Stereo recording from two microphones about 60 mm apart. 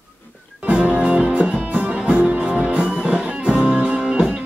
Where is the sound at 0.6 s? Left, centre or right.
Right.